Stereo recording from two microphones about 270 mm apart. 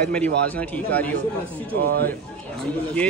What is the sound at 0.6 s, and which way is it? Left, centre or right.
Speech, centre.